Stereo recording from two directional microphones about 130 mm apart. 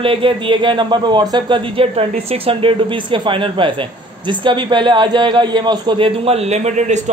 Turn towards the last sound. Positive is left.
turn(degrees=-65)  # may be behind; listen again after turning